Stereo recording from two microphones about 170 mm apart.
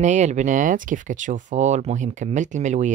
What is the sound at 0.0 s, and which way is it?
Speech, 45° right (ahead or behind).